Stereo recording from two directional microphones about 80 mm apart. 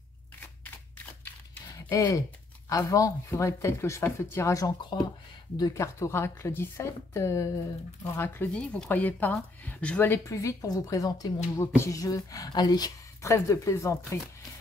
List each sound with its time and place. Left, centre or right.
0.9 s a sound: left
1.7 s speech: left
8.0 s speech: left
10.1 s a woman's voice: left
13.2 s speech: left